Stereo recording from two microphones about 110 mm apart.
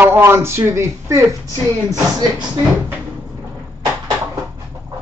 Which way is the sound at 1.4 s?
30° left (ahead or behind).